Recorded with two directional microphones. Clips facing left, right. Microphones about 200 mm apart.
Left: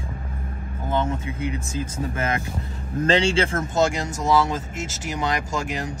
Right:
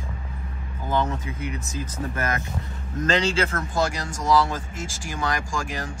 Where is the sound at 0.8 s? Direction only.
25° left (ahead or behind).